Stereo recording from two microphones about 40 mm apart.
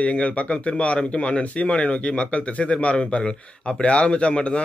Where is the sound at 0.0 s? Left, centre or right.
Left.